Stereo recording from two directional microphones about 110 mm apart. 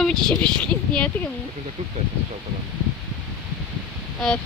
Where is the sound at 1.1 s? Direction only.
15° left (ahead or behind).